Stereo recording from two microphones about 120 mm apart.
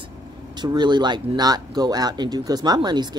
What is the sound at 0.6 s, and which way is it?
Speech, 40° right (ahead or behind).